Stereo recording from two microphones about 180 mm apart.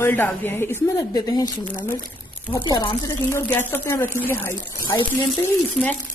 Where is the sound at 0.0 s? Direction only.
10° left (ahead or behind).